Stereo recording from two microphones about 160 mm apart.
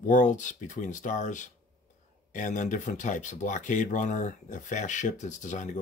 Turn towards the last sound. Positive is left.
turn(degrees=50)  # may be behind; listen again after turning